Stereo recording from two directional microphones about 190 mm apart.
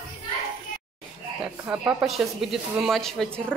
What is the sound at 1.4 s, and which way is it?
Speech, 5° right (ahead or behind).